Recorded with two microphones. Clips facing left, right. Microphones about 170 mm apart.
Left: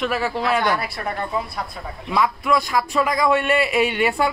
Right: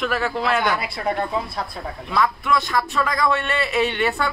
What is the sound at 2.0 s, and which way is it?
A man's voice, 10° left (ahead or behind).